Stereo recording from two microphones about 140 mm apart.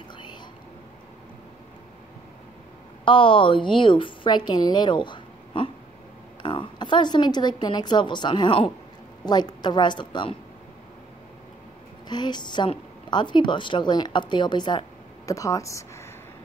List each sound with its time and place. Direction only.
0.1 s whispering: 35° left (ahead or behind)
3.1 s a woman's voice: 40° left (ahead or behind)
12.1 s a woman's voice: 30° left (ahead or behind)